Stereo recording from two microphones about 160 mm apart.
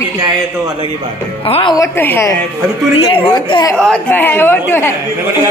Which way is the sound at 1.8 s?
15° left (ahead or behind).